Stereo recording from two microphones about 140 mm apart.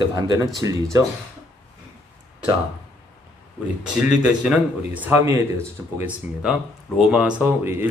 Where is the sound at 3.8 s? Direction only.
5° right (ahead or behind).